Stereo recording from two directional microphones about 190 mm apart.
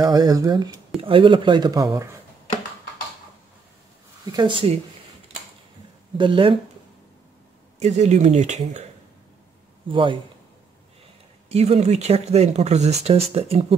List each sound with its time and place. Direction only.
0.0 s speech: 20° right (ahead or behind)
4.3 s speech: 25° right (ahead or behind)
6.1 s speech: 25° right (ahead or behind)
7.8 s speech: 35° right (ahead or behind)
9.8 s speech: 25° right (ahead or behind)
11.4 s speech: 35° right (ahead or behind)